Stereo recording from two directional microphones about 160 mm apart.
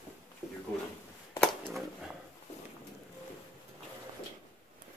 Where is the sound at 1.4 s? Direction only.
Centre (ahead or behind).